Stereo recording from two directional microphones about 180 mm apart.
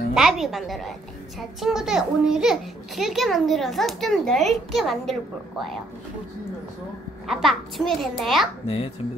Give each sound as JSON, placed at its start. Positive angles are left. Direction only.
{"t": 0.1, "sound": "a child's voice", "side_deg": 0}
{"t": 7.2, "sound": "a child's voice", "side_deg": 0}
{"t": 8.6, "sound": "a child's voice", "side_deg": 35}